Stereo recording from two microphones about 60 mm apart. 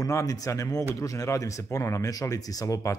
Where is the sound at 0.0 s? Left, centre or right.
Left.